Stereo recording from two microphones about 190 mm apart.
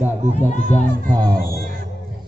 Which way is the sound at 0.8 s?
45° right (ahead or behind).